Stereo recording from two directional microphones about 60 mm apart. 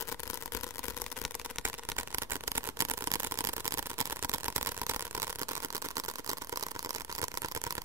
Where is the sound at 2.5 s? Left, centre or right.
Right.